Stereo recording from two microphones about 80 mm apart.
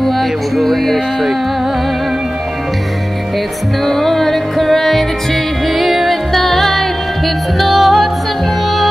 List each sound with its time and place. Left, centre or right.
0.0 s speech: centre
3.8 s music: centre